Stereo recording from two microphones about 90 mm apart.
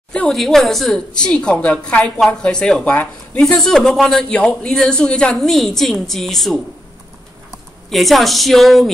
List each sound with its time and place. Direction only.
0.1 s a sound: 10° left (ahead or behind)
0.4 s a woman's voice: 5° left (ahead or behind)
3.4 s a man's voice: 5° left (ahead or behind)
7.9 s a man's voice: centre (ahead or behind)